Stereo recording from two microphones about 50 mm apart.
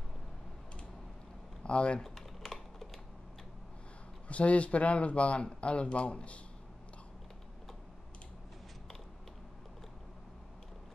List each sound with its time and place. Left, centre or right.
1.6 s typing: left
2.0 s typing: centre
4.3 s speech: left